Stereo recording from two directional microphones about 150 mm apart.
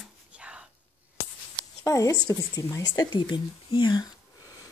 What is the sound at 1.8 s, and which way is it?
Speech, 25° left (ahead or behind).